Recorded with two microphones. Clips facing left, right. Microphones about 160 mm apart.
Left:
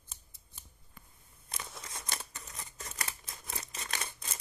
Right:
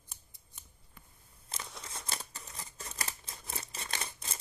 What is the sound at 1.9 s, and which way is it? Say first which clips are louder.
Scissors: right 2 dB; 30° right (ahead or behind).